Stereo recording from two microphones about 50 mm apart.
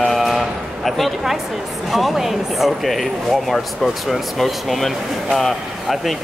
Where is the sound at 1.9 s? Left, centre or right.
Centre.